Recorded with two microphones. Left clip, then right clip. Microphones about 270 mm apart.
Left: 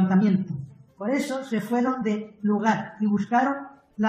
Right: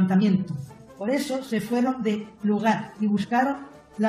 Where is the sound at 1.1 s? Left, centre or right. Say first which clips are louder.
Right 1 dB; centre.